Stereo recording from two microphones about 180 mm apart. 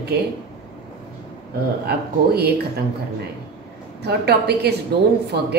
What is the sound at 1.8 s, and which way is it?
Speech, 60° right (ahead or behind).